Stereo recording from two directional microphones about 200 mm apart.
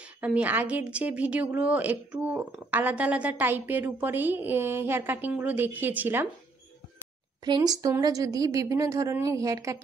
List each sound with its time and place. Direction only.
0.2 s a woman's voice: 5° right (ahead or behind)
7.4 s a woman's voice: 20° right (ahead or behind)